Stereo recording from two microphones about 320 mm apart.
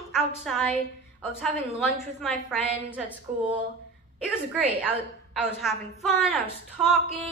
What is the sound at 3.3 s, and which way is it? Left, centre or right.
Speech, right.